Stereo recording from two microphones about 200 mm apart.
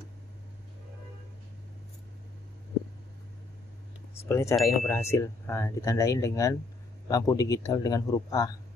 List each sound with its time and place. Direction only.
4.2 s speech: 15° left (ahead or behind)